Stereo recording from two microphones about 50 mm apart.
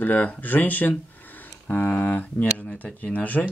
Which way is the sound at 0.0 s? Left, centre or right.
Left.